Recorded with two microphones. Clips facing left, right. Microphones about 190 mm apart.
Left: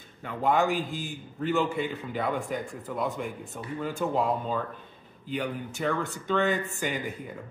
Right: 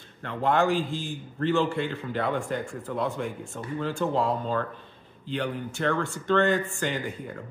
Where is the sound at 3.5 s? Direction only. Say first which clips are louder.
Right 2 dB; 20° left (ahead or behind).